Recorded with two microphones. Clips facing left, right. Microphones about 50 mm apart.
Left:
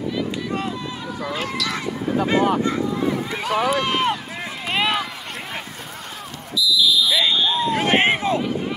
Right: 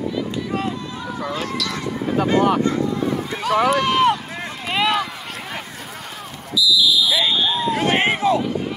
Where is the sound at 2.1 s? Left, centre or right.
Right.